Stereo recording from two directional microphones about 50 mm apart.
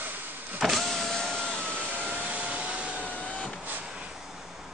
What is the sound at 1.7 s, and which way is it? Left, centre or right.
Vacuum cleaner, right.